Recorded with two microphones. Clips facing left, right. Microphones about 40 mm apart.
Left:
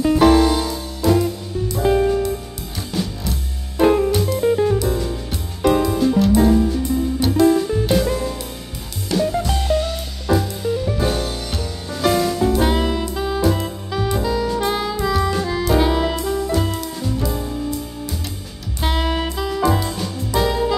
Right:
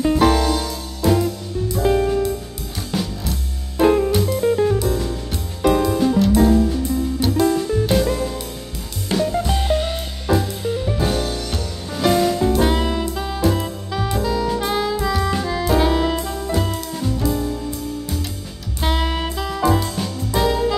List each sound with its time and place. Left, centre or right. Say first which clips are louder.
0.0 s music: left 3 dB; centre
1.8 s music: left 1 dB; centre
9.4 s music: even; centre
10.3 s music: left 1 dB; centre
18.8 s music: left 1 dB; centre